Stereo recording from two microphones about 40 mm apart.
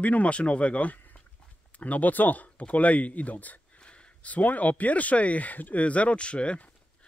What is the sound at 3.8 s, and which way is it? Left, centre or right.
Speech, left.